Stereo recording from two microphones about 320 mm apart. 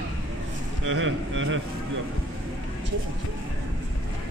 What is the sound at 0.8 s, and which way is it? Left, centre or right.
Speech, right.